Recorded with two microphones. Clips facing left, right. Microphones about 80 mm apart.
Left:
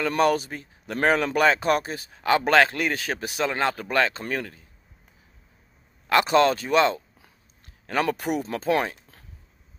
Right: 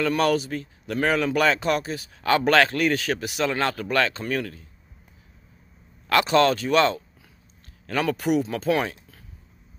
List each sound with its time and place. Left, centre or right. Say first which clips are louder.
0.2 s a man's voice: left 1 dB; left
6.0 s speech: even; left